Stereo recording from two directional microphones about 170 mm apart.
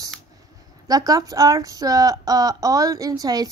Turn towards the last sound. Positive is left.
turn(degrees=-20)  # may be behind; listen again after turning